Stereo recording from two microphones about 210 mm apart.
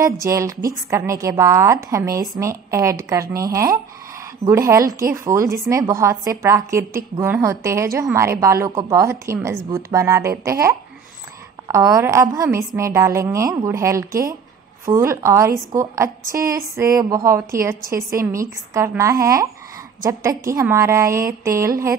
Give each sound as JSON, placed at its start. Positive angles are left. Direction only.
{"t": 0.0, "sound": "a woman's voice", "side_deg": -15}